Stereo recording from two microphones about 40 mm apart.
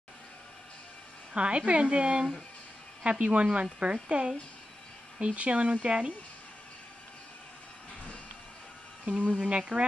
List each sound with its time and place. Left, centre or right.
1.3 s a woman's voice: right
9.4 s a woman's voice: right